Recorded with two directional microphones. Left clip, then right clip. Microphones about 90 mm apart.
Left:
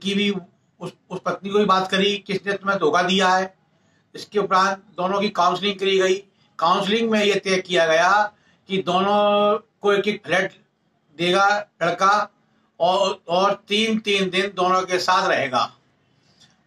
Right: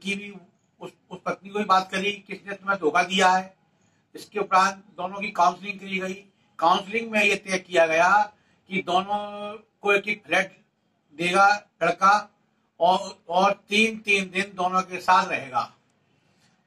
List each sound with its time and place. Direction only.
0.0 s a man's voice: 30° left (ahead or behind)